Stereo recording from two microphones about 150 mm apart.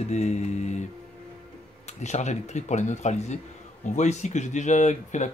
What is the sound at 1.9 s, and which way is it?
Speech, 50° left (ahead or behind).